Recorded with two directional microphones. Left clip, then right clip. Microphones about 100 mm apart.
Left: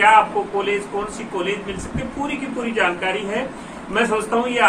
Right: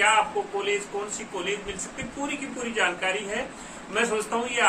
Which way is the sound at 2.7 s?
25° right (ahead or behind).